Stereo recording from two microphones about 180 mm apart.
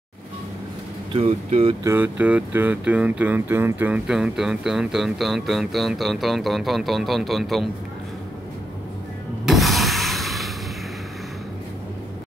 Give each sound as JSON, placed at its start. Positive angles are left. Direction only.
{"t": 1.1, "sound": "speech", "side_deg": -35}
{"t": 1.8, "sound": "speech", "side_deg": -15}
{"t": 9.5, "sound": "a sound", "side_deg": 0}